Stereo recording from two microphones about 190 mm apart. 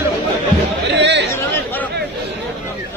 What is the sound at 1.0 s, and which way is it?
Chatter, 65° right (ahead or behind).